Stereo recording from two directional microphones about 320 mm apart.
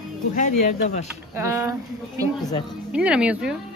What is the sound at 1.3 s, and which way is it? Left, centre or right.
Speech, centre.